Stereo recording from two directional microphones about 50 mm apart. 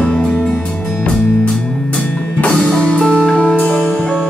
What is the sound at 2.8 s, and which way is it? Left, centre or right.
Music, left.